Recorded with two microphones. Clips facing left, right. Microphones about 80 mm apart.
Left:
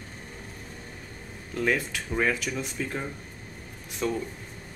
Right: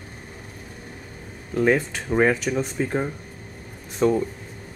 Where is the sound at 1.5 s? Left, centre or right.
Right.